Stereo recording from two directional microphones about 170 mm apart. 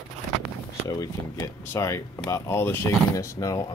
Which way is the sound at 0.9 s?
20° left (ahead or behind).